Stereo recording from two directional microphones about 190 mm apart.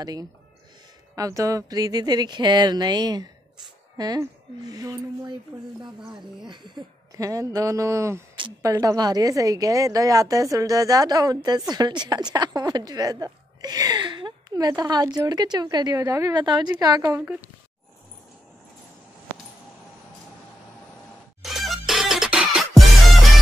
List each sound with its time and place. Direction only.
0.0 s a woman's voice: 20° right (ahead or behind)
6.4 s a woman's voice: 25° right (ahead or behind)
21.4 s music: centre (ahead or behind)